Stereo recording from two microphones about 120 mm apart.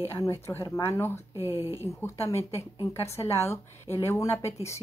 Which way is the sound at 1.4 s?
25° right (ahead or behind).